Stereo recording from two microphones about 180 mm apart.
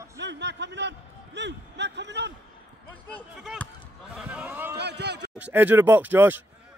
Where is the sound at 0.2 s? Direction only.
75° right (ahead or behind).